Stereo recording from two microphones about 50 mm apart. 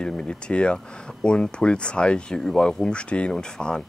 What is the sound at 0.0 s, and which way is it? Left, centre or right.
Speech, centre.